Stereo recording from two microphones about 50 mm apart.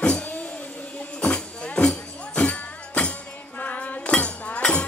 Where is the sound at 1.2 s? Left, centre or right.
Left.